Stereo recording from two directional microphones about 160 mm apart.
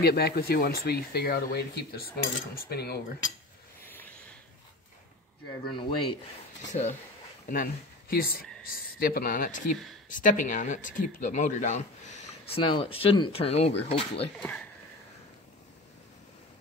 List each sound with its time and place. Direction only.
0.0 s speech: 75° left (ahead or behind)
2.5 s cutlery: 85° left
3.8 s a sound: 15° left (ahead or behind)
5.7 s speech: 30° left (ahead or behind)
6.7 s speech: 50° left (ahead or behind)
7.4 s speech: 60° left (ahead or behind); by 14.3 s 35° left (ahead or behind)
14.4 s speech: 10° left (ahead or behind)